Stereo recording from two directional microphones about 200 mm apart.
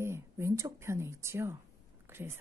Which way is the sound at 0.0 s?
15° right (ahead or behind).